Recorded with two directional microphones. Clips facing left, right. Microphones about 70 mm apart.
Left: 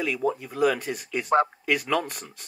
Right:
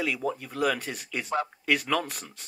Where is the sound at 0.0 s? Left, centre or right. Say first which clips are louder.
Left 3 dB; centre.